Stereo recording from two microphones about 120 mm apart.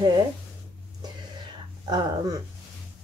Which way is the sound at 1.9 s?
30° right (ahead or behind).